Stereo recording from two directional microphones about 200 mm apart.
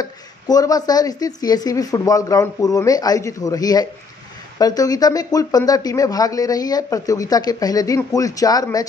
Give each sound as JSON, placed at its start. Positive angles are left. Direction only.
{"t": 0.0, "sound": "speech", "side_deg": 20}